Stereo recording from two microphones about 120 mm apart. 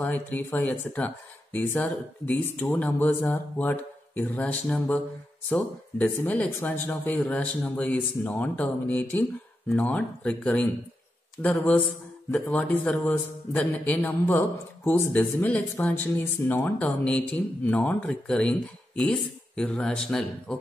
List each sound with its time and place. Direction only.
0.0 s speech: 15° left (ahead or behind)
6.1 s speech: 15° left (ahead or behind)